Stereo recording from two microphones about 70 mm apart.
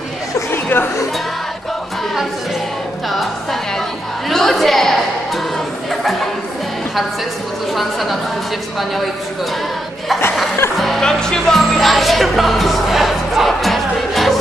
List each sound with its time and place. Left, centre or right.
0.5 s chatter: left
4.3 s a woman's voice: centre
5.9 s chatter: centre
7.7 s a woman's voice: centre
10.8 s music: centre